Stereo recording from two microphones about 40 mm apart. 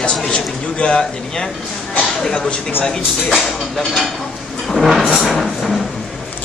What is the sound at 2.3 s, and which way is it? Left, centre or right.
Speech, left.